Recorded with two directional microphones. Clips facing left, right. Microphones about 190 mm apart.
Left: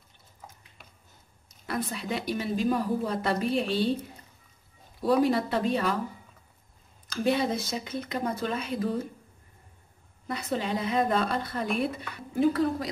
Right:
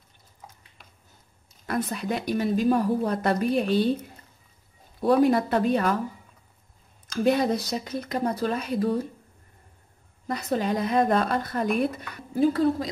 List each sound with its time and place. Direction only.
1.7 s a woman's voice: 50° right (ahead or behind)
5.0 s a woman's voice: 50° right (ahead or behind)
7.2 s speech: 40° right (ahead or behind)
10.2 s a woman's voice: 45° right (ahead or behind)